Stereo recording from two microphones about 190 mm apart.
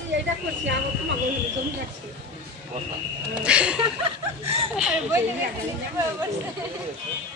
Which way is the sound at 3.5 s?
5° right (ahead or behind).